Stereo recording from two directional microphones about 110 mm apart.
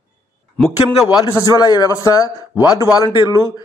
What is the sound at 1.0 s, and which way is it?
A man's voice, 35° left (ahead or behind).